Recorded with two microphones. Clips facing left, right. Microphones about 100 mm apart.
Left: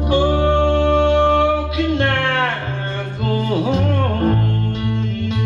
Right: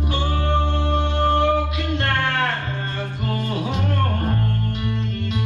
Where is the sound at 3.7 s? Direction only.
90° left.